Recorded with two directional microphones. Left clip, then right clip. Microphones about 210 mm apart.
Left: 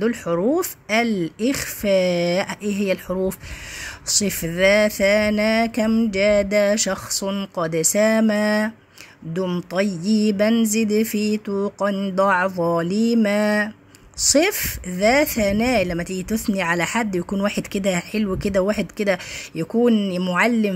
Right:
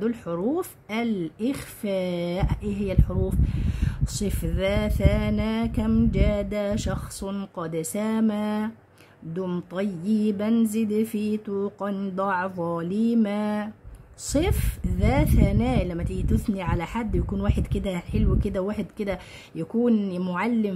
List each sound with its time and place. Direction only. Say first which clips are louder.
0.0 s speech: left 7 dB; 15° left (ahead or behind)